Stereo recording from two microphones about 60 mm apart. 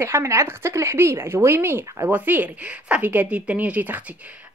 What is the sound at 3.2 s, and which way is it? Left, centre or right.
Speech, right.